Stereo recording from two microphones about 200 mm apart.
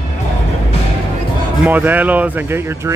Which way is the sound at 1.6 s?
10° right (ahead or behind).